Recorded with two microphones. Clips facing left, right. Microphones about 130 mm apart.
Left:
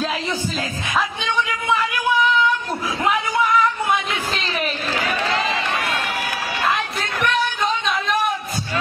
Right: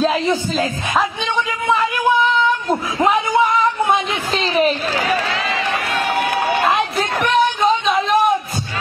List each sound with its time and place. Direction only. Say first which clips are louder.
0.0 s a man's voice: right 7 dB; 25° right (ahead or behind)
3.1 s a sound: right 3 dB; 25° right (ahead or behind)
7.0 s music: right 5 dB; 35° right (ahead or behind)